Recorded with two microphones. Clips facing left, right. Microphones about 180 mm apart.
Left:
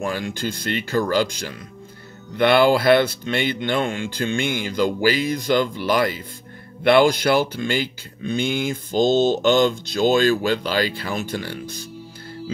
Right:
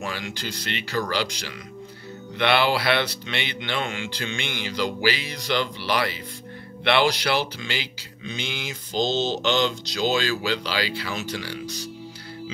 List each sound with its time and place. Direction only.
0.0 s speech: 50° left (ahead or behind)